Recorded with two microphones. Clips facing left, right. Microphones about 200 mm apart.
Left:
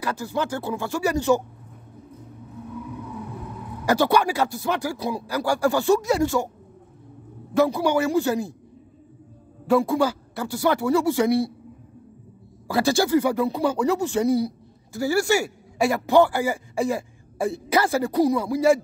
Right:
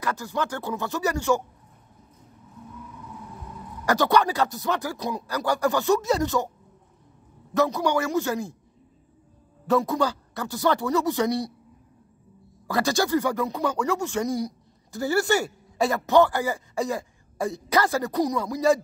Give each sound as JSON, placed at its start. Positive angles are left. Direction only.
{"t": 0.0, "sound": "speech", "side_deg": 15}
{"t": 3.8, "sound": "speech", "side_deg": 15}
{"t": 7.5, "sound": "speech", "side_deg": 15}
{"t": 9.7, "sound": "speech", "side_deg": 15}
{"t": 12.7, "sound": "speech", "side_deg": 15}
{"t": 15.3, "sound": "speech", "side_deg": 5}